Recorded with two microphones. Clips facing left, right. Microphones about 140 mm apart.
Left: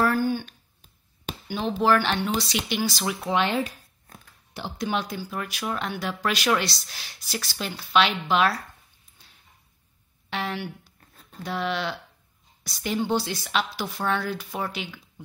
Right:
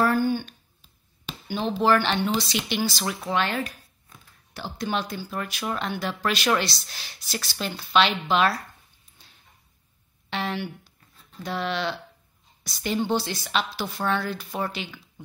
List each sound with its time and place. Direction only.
0.0 s a sound: centre (ahead or behind)
1.8 s a woman's voice: 5° left (ahead or behind)
4.1 s a sound: 45° left (ahead or behind)
4.6 s speech: 20° left (ahead or behind)
4.8 s a woman's voice: 10° left (ahead or behind)
10.3 s a woman's voice: 5° left (ahead or behind)